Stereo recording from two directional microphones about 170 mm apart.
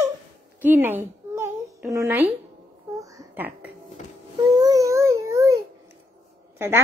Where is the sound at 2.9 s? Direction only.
20° right (ahead or behind).